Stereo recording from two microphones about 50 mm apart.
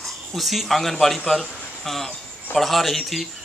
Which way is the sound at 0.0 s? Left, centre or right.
Centre.